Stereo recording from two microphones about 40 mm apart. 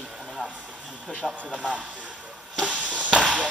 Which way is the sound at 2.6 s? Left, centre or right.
Right.